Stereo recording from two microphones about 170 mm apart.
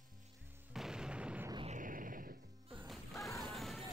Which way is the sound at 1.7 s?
50° right (ahead or behind).